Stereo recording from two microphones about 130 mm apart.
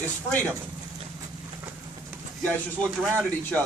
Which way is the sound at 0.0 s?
10° left (ahead or behind).